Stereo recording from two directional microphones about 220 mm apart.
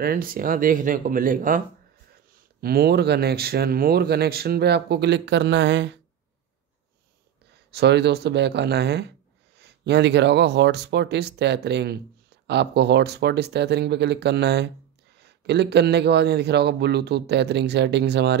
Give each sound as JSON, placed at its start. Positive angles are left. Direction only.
{"t": 0.0, "sound": "speech", "side_deg": -40}
{"t": 2.6, "sound": "speech", "side_deg": -45}
{"t": 7.7, "sound": "speech", "side_deg": -50}